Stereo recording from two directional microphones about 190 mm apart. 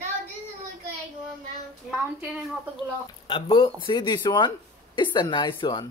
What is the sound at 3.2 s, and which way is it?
Speech, 25° left (ahead or behind).